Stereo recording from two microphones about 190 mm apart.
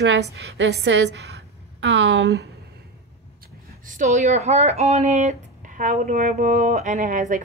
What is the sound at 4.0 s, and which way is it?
A woman's voice, 35° right (ahead or behind).